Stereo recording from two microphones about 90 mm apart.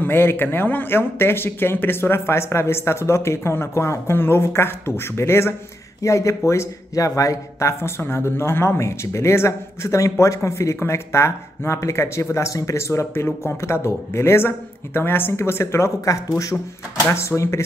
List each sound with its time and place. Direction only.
0.0 s speech: 25° left (ahead or behind)
17.0 s speech: 25° left (ahead or behind)